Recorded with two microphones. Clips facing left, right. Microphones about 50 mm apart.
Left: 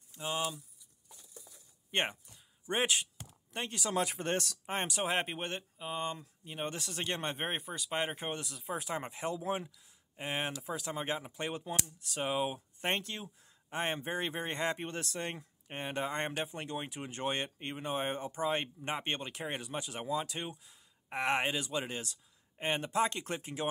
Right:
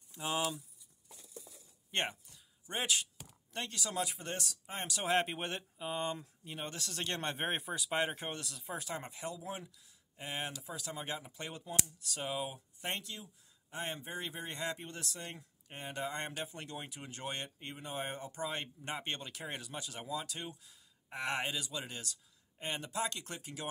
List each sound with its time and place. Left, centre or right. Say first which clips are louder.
0.1 s speech: even; centre
1.9 s speech: left 3 dB; left
5.0 s speech: right 6 dB; centre
6.6 s speech: left 4 dB; left
7.6 s speech: right 1 dB; centre
8.1 s speech: left 3 dB; centre; by 23.7 s left